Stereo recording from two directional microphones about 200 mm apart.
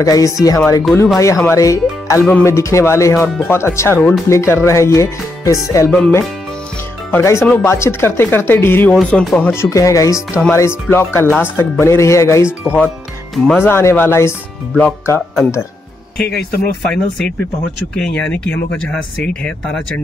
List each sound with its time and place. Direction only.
0.0 s speech: 15° left (ahead or behind)
0.9 s speech: centre (ahead or behind)
1.2 s speech: 15° left (ahead or behind)
17.9 s speech: 5° left (ahead or behind)